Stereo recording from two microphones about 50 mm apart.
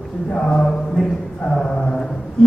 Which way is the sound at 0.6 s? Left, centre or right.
Centre.